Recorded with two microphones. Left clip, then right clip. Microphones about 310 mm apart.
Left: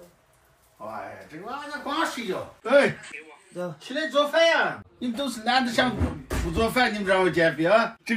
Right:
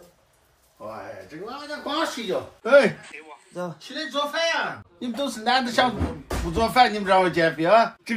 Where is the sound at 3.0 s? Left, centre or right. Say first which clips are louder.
Even; right.